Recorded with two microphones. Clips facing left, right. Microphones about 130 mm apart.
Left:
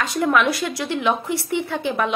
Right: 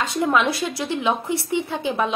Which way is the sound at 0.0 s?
20° right (ahead or behind).